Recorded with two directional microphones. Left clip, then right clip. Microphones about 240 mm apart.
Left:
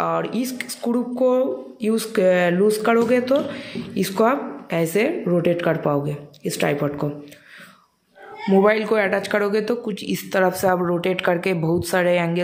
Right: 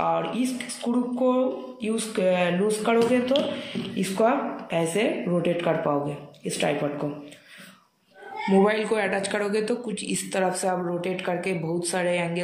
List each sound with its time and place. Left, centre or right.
0.0 s a sound: left
0.8 s speech: left
8.5 s speech: left